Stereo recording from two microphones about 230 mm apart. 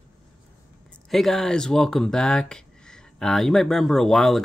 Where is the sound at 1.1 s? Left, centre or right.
Centre.